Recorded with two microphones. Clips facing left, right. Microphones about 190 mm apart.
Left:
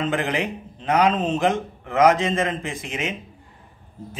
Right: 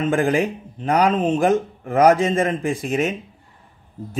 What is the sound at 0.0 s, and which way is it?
Speech, 45° right (ahead or behind).